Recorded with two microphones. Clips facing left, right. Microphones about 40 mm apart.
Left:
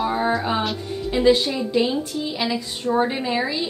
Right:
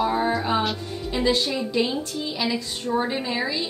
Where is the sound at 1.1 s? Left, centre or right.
Left.